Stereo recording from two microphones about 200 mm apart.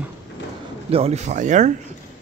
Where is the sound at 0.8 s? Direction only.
30° right (ahead or behind).